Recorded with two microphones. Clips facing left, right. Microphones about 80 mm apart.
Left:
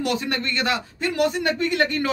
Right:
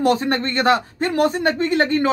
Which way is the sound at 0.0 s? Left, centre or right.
Right.